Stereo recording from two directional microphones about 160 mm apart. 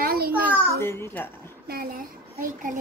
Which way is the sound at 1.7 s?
65° right (ahead or behind).